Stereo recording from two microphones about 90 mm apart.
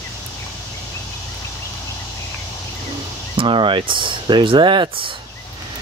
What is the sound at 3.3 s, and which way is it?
Speech, 70° right (ahead or behind).